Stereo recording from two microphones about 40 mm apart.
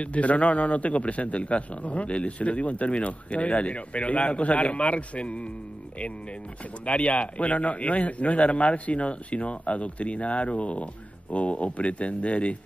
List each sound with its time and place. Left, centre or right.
0.0 s a man's voice: left
6.9 s a man's voice: left